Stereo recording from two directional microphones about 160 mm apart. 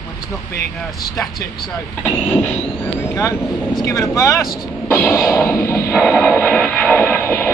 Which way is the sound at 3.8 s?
20° left (ahead or behind).